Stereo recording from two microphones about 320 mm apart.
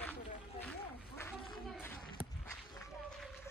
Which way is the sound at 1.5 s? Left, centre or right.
Centre.